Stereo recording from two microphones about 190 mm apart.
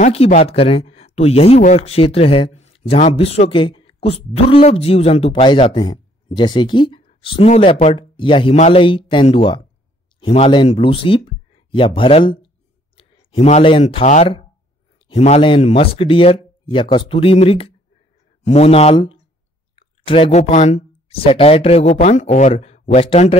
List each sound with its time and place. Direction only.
0.0 s speech: 30° left (ahead or behind)